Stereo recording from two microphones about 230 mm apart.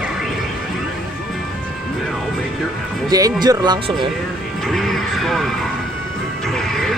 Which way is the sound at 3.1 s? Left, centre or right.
Centre.